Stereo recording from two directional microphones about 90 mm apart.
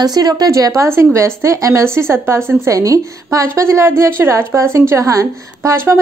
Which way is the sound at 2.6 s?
40° right (ahead or behind).